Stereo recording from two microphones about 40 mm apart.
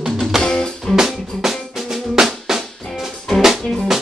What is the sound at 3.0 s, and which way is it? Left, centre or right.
Music, centre.